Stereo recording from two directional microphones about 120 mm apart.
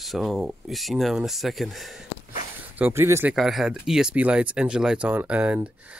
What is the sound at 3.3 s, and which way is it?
Speech, centre (ahead or behind).